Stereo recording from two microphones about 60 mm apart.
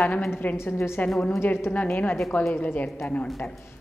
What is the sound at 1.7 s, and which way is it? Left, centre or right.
A woman's voice, left.